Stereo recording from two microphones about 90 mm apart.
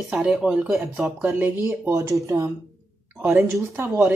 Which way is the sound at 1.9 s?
35° right (ahead or behind).